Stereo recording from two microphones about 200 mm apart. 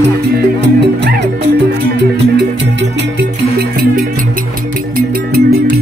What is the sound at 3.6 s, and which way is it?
Music, 50° right (ahead or behind).